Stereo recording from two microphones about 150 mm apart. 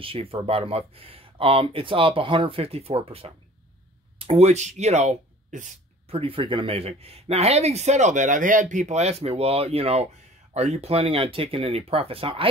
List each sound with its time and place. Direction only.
0.0 s speech: 40° right (ahead or behind); by 5.7 s 55° right (ahead or behind)
6.0 s speech: 40° right (ahead or behind)